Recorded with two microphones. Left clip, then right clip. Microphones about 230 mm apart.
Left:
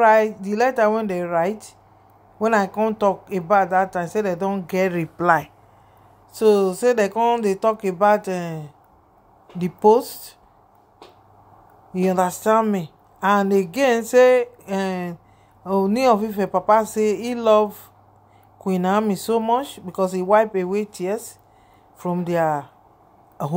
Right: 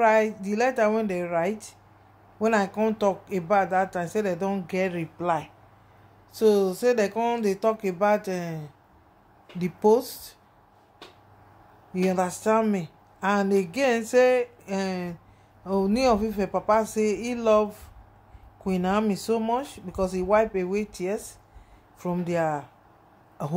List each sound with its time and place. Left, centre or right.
0.0 s speech: centre
4.7 s speech: left
6.3 s speech: centre
11.9 s speech: centre